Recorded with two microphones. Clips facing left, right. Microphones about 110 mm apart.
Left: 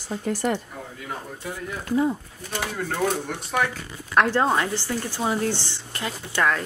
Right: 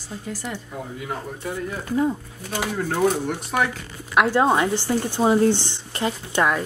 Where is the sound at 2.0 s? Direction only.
Centre (ahead or behind).